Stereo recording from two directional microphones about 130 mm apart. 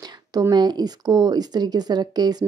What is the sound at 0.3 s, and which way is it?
Speech, 30° right (ahead or behind).